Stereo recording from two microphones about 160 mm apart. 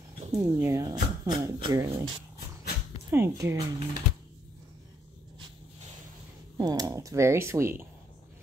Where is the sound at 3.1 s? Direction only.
15° right (ahead or behind).